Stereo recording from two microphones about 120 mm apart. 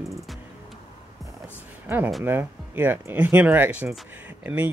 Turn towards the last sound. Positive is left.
turn(degrees=-15)  # may be behind; listen again after turning